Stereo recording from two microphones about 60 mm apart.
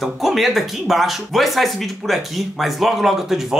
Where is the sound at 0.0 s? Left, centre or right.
Centre.